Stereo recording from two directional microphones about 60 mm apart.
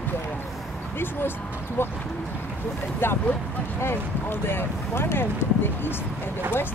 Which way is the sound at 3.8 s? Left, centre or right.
Left.